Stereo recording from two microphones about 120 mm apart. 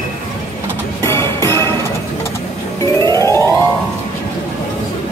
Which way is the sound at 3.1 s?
25° left (ahead or behind).